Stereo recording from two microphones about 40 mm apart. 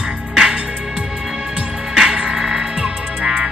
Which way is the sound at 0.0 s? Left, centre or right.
Centre.